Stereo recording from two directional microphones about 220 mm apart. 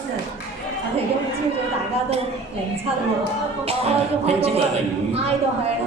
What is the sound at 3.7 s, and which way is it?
Music, 25° right (ahead or behind).